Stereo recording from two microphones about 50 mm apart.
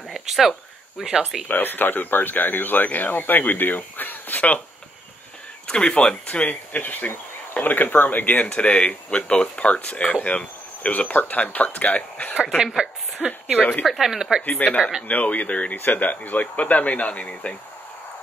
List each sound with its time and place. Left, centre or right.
0.1 s a sound: centre
1.5 s speech: left
5.7 s speech: left
13.2 s speech: centre
14.4 s speech: left